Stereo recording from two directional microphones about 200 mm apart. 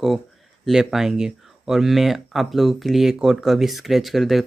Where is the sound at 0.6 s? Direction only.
Centre (ahead or behind).